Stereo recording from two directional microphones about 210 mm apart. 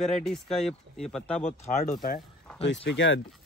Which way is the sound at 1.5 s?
35° left (ahead or behind).